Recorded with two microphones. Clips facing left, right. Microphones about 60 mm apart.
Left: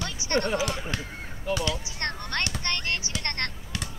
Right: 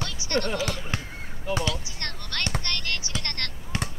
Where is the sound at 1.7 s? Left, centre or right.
Left.